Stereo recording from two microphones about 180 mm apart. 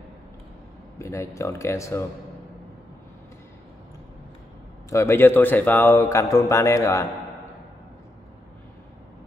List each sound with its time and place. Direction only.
0.9 s speech: 15° left (ahead or behind)
4.8 s speech: 15° left (ahead or behind)